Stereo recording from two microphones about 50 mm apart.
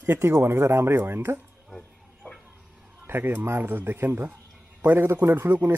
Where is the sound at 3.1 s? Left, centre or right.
Right.